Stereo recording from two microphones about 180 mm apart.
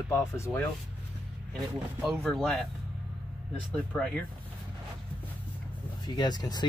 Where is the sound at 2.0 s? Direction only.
Centre (ahead or behind).